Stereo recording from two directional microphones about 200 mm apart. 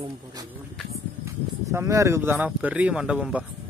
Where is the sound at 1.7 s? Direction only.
15° right (ahead or behind).